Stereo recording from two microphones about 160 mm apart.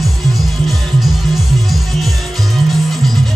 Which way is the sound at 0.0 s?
Centre (ahead or behind).